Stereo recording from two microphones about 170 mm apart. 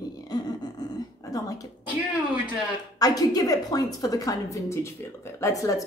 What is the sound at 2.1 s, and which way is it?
Speech, 10° right (ahead or behind).